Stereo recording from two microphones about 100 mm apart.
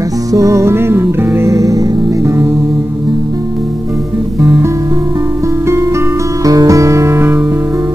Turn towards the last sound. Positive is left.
turn(degrees=-25)  # may be behind; listen again after turning